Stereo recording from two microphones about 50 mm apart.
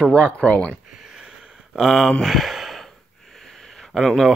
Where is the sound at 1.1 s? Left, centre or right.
Centre.